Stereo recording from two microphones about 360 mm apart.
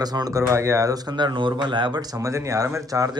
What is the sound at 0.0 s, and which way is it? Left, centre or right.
Speech, centre.